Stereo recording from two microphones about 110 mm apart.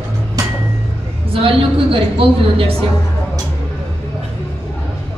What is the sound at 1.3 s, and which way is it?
A woman's voice, 55° right (ahead or behind).